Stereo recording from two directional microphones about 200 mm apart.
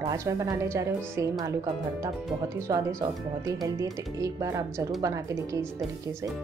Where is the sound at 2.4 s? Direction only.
15° right (ahead or behind).